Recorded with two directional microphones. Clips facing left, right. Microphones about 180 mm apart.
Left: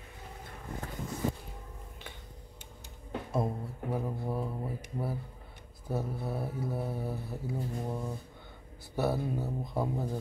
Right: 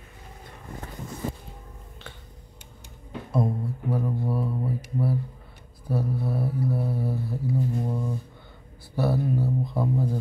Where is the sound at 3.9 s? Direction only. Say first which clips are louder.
Right 6 dB; 15° left (ahead or behind).